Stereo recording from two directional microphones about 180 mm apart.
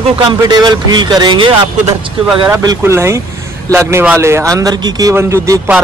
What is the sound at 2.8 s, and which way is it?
A man's voice, 15° right (ahead or behind).